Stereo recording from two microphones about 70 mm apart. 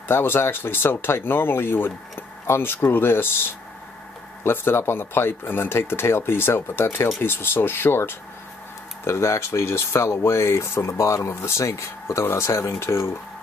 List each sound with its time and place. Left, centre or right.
0.1 s speech: left